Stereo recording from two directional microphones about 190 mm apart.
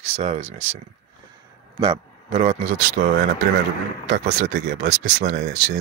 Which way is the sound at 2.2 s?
40° right (ahead or behind).